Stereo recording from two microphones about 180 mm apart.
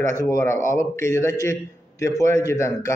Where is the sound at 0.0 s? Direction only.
20° left (ahead or behind).